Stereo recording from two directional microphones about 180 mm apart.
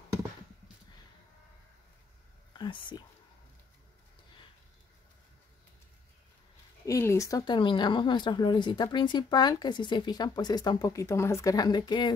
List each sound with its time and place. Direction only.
2.6 s speech: 25° left (ahead or behind)
6.9 s speech: 15° left (ahead or behind)